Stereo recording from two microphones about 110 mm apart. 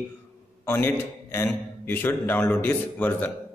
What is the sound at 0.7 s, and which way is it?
A man's voice, 20° left (ahead or behind).